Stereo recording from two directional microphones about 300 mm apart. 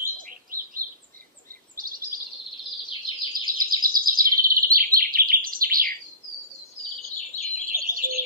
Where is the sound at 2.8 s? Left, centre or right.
Centre.